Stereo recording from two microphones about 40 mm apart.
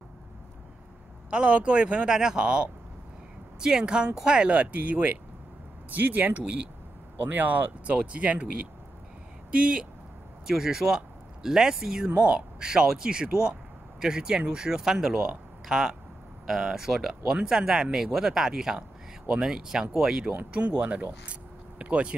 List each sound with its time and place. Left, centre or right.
1.3 s speech: right
2.0 s speech: centre
4.5 s speech: right
9.5 s speech: right
10.4 s speech: centre
12.2 s speech: right
20.2 s speech: right